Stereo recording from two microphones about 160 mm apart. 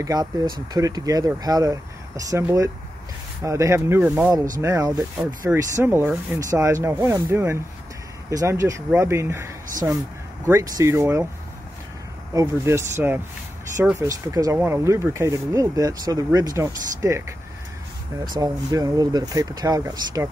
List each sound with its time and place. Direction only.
0.0 s speech: 25° right (ahead or behind)
12.4 s speech: 15° right (ahead or behind)
18.3 s speech: 25° right (ahead or behind)